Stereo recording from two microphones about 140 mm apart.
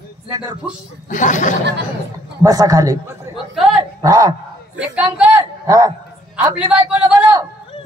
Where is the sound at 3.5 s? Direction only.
Centre (ahead or behind).